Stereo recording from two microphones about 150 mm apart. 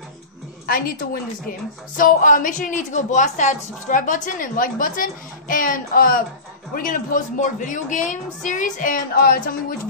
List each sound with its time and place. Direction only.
0.7 s a woman's voice: 75° left (ahead or behind)
2.0 s a woman's voice: 65° left (ahead or behind)